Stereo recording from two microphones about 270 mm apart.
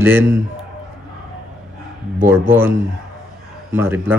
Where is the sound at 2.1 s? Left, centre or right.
Centre.